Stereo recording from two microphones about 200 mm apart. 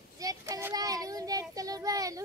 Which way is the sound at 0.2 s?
15° right (ahead or behind).